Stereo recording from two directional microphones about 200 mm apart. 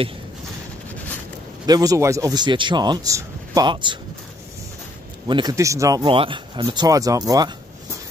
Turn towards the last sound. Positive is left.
turn(degrees=-20)  # may be behind; listen again after turning